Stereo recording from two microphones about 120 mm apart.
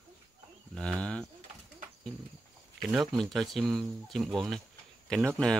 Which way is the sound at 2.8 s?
Centre (ahead or behind).